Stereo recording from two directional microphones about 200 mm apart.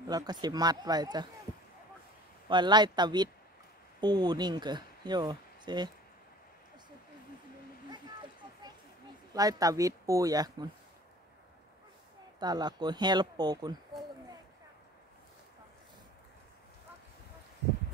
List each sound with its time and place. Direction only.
0.0 s speech: 20° right (ahead or behind)
2.4 s speech: 20° right (ahead or behind)
9.3 s speech: 20° right (ahead or behind)
12.4 s speech: 20° right (ahead or behind)